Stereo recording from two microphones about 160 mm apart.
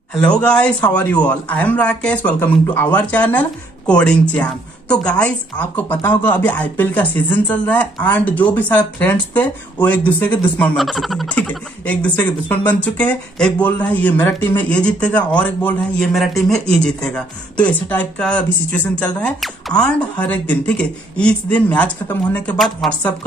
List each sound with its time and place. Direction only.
0.1 s speech: 5° left (ahead or behind)